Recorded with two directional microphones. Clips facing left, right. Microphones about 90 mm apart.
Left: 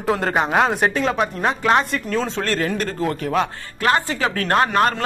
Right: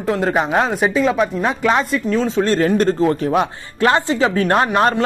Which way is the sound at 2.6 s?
35° right (ahead or behind).